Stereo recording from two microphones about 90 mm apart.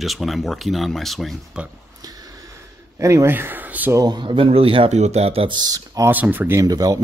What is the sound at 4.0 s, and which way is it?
Speech, 55° right (ahead or behind).